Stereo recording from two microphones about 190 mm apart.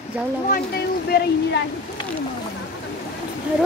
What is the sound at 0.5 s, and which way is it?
Speech, 55° left (ahead or behind).